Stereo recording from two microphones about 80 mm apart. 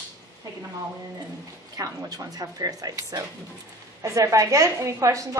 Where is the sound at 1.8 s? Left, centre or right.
Right.